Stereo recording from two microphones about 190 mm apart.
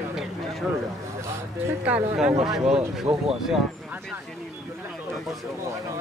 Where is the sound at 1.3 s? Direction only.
10° right (ahead or behind).